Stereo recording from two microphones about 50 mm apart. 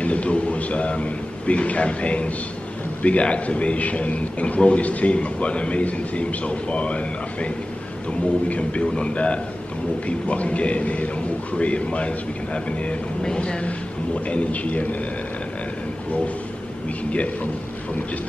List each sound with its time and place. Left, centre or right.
0.0 s a man's voice: left
17.1 s a man's voice: left